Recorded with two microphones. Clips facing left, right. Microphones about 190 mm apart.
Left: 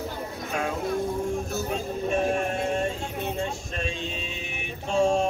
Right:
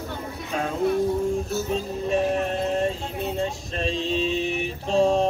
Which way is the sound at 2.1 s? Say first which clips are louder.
Right 3 dB; 35° right (ahead or behind).